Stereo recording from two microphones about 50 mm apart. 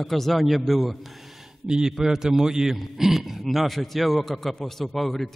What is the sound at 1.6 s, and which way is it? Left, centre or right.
A man's voice, centre.